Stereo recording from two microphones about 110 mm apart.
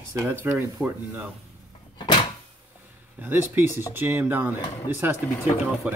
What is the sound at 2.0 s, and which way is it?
Cupboard open or close, 45° left (ahead or behind).